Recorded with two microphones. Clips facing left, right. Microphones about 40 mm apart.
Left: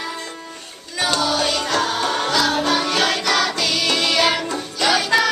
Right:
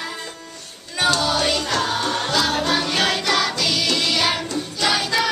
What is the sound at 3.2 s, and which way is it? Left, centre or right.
Music, centre.